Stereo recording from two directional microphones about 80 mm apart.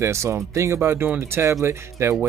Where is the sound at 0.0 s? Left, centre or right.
Right.